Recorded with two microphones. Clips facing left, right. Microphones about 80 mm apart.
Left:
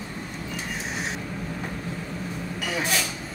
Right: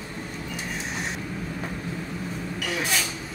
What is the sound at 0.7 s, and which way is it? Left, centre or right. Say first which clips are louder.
Vehicle: even; centre.